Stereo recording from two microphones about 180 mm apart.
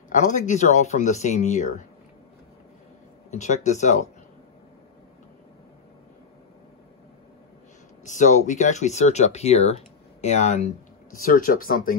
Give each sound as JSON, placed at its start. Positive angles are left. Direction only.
{"t": 0.1, "sound": "speech", "side_deg": 45}
{"t": 3.3, "sound": "speech", "side_deg": 40}
{"t": 8.0, "sound": "speech", "side_deg": 45}